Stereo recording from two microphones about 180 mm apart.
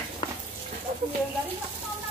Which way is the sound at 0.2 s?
30° left (ahead or behind).